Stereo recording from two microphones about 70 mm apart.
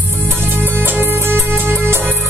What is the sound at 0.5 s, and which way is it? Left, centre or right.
Music, right.